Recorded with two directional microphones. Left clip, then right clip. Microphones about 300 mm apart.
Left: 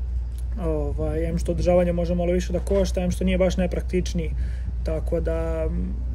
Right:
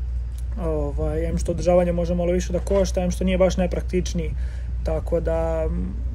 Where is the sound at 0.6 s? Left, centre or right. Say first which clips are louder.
Right 1 dB; centre.